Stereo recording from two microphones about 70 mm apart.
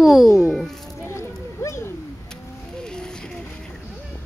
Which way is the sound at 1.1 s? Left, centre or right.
Left.